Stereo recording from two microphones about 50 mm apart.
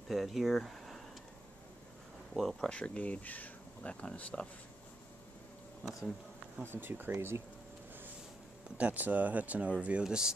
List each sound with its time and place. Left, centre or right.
0.1 s speech: centre
2.3 s speech: centre
2.7 s speech: left
6.6 s speech: right
7.2 s speech: right
8.7 s speech: right
10.0 s speech: centre